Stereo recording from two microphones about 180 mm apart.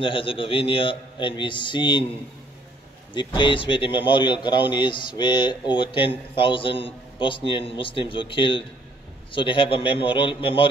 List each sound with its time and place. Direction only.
0.0 s speech: 30° left (ahead or behind)
3.3 s speech: 25° left (ahead or behind)